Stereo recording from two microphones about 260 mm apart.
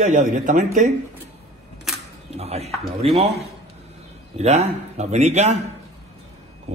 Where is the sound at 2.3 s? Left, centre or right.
Right.